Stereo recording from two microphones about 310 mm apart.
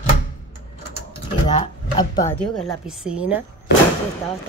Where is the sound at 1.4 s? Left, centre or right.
Centre.